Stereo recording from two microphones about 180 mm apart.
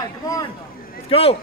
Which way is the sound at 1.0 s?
35° left (ahead or behind).